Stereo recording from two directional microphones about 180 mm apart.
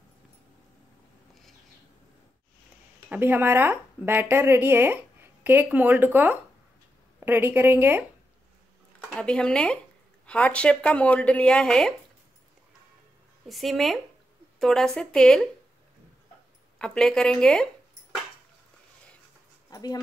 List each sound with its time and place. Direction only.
3.1 s speech: 10° right (ahead or behind)
9.1 s speech: 5° left (ahead or behind)
13.5 s speech: centre (ahead or behind)
16.7 s speech: 5° left (ahead or behind)
19.7 s speech: 20° left (ahead or behind)